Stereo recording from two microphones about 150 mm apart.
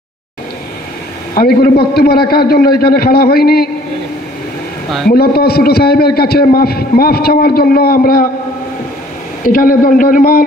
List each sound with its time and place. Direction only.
1.3 s a man's voice: 90° left
5.0 s a man's voice: 90° left
9.4 s a man's voice: 70° left (ahead or behind)